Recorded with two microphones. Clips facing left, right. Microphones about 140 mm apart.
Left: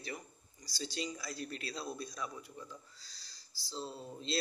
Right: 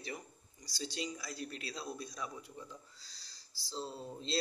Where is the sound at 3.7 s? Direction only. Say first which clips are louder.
Right 1 dB; 30° right (ahead or behind).